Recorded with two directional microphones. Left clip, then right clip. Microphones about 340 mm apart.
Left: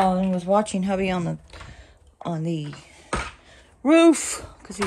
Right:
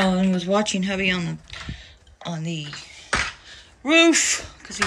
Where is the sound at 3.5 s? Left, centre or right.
Centre.